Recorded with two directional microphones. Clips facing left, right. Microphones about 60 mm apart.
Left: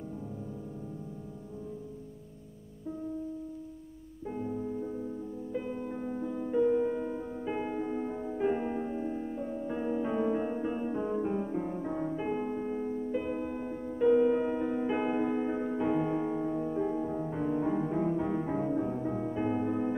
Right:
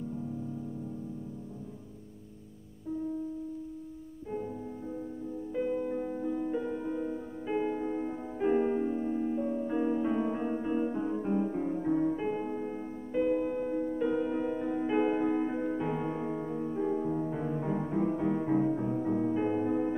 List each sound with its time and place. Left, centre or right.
4.3 s music: centre
5.5 s music: centre
6.7 s music: centre